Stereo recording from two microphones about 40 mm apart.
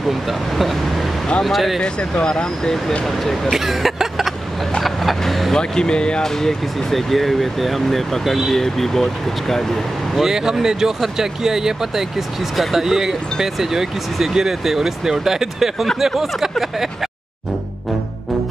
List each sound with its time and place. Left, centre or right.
0.1 s speech: centre
2.1 s speech: left
3.5 s a sound: centre
4.8 s vehicle: centre
5.6 s speech: left
6.4 s speech: centre
10.2 s speech: centre